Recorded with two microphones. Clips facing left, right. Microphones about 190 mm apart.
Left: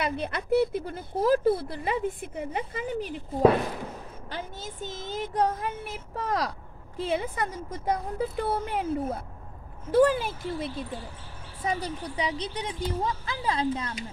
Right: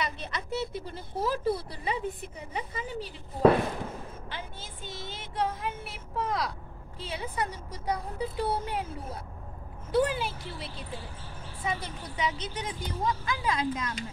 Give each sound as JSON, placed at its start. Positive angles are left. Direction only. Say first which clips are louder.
{"t": 0.0, "sound": "a woman's voice", "louder": "left 5 dB", "side_deg": 55}
{"t": 4.3, "sound": "a woman's voice", "louder": "left 5 dB", "side_deg": 40}
{"t": 7.0, "sound": "a woman's voice", "louder": "left 6 dB", "side_deg": 50}